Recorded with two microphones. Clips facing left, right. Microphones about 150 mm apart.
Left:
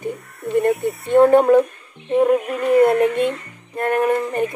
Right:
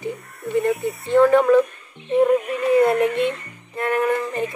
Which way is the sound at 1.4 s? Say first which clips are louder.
Left 2 dB; 50° left (ahead or behind).